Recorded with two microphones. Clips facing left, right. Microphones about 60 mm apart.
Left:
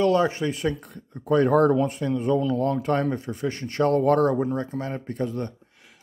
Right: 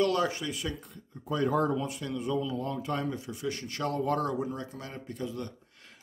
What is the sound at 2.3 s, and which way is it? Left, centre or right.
Speech, left.